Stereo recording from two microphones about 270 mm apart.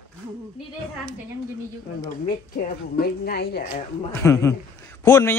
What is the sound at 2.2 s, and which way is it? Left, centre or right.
A woman's voice, left.